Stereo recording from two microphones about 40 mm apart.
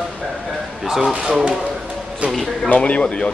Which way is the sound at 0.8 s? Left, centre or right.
Centre.